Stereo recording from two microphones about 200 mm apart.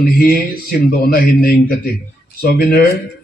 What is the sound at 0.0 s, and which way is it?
A man's voice, 50° left (ahead or behind).